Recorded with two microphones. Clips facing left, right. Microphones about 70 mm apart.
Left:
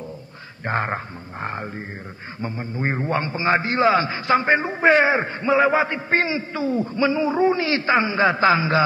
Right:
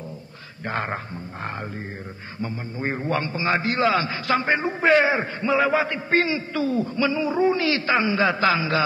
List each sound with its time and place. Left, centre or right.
0.7 s a man's voice: left
0.9 s a sound: centre
2.4 s a man's voice: left